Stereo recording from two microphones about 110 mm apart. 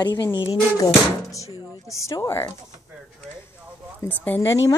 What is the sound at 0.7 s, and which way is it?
Speech, 30° left (ahead or behind).